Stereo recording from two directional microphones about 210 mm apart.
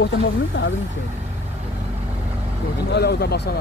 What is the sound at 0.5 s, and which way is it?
Speech, 60° left (ahead or behind).